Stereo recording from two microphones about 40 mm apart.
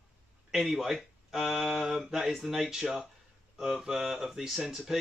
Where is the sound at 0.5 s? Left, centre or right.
Centre.